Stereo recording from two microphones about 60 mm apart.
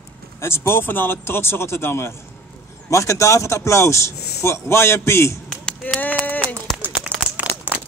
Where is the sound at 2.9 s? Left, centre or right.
Left.